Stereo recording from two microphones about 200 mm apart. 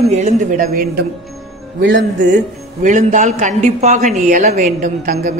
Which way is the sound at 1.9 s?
40° right (ahead or behind).